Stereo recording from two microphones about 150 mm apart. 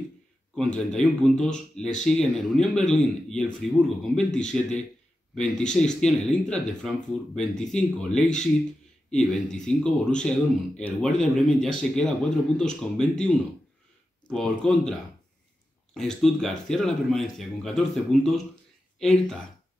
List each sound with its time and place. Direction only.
0.6 s speech: 5° left (ahead or behind)
14.2 s speech: 5° left (ahead or behind)